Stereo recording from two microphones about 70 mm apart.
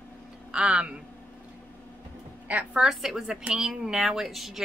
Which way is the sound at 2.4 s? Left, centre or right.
Centre.